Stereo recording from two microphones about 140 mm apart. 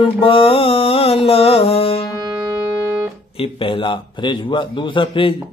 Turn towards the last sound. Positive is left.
turn(degrees=40)  # may be behind; listen again after turning